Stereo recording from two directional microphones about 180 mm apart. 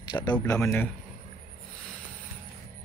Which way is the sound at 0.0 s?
25° left (ahead or behind).